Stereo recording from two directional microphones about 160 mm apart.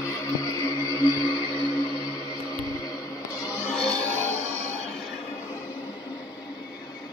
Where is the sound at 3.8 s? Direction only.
5° left (ahead or behind).